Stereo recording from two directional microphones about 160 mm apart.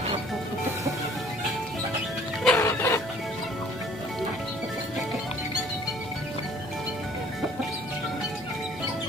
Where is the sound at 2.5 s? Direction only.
15° left (ahead or behind).